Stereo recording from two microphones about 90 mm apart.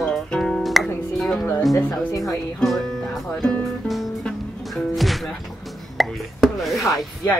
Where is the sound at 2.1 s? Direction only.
35° left (ahead or behind).